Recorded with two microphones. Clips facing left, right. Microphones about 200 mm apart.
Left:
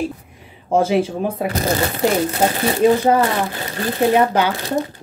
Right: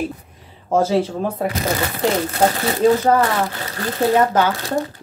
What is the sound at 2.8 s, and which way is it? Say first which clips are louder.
Speech: even; 20° left (ahead or behind).